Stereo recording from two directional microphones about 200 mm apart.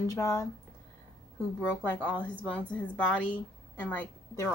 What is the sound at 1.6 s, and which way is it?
A woman's voice, 10° left (ahead or behind).